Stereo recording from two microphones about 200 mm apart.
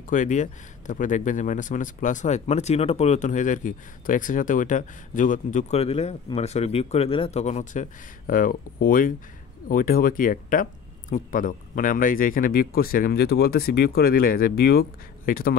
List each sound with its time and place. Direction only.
0.0 s speech: 40° left (ahead or behind)